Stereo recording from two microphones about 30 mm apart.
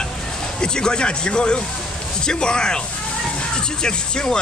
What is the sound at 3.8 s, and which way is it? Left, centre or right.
Speech, left.